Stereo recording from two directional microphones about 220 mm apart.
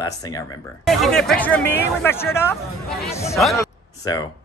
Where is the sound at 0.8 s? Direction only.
Centre (ahead or behind).